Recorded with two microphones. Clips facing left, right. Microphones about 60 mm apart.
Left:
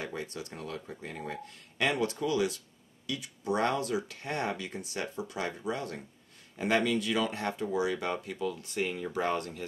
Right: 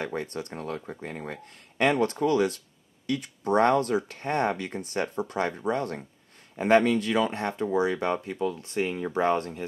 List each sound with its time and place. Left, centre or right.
0.0 s speech: right